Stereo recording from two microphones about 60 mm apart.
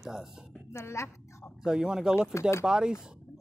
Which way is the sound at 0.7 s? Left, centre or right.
Left.